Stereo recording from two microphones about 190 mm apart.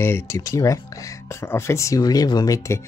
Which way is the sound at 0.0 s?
15° left (ahead or behind).